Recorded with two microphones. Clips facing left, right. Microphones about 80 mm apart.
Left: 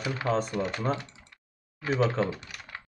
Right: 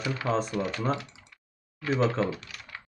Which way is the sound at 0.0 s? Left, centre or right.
Centre.